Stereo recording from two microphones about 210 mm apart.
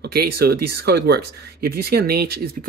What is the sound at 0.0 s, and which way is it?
Speech, 50° right (ahead or behind).